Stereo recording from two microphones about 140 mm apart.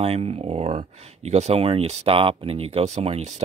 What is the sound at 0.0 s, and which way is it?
Speech, 45° right (ahead or behind).